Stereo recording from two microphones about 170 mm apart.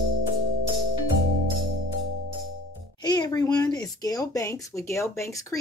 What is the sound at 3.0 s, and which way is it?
Speech, 25° left (ahead or behind).